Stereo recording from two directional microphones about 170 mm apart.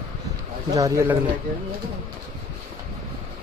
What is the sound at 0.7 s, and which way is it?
Speech, 20° right (ahead or behind).